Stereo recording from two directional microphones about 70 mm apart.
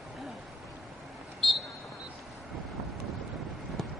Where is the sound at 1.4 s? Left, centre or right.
Centre.